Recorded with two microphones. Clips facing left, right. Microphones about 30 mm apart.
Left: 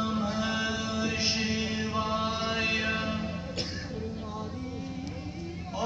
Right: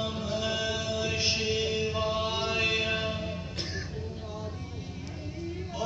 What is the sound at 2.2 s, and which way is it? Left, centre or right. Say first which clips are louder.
Chant: even; centre.